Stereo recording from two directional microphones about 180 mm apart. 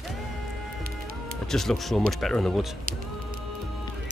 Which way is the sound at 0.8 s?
55° right (ahead or behind).